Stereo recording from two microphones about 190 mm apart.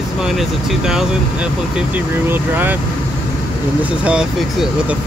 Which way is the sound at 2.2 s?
10° right (ahead or behind).